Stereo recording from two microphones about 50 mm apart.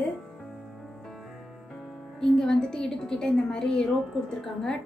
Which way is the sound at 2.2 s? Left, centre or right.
Centre.